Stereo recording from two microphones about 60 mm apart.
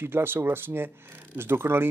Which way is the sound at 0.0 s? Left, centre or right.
Right.